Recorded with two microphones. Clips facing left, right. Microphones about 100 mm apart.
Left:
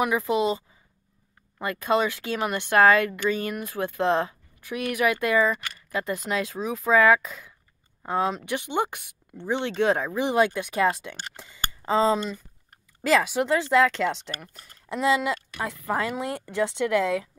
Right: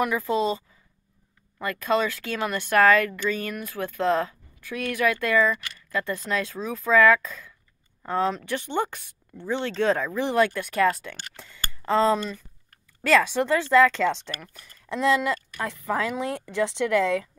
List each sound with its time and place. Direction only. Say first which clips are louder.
0.0 s speech: left 1 dB; 20° left (ahead or behind)
14.3 s speech: even; 30° left (ahead or behind)
14.9 s speech: right 1 dB; 10° left (ahead or behind)